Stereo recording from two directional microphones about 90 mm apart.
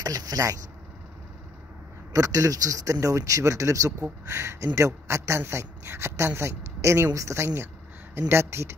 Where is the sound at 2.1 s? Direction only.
40° right (ahead or behind).